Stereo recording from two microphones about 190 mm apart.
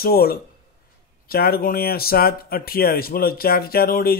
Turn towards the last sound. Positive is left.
turn(degrees=50)  # may be behind; listen again after turning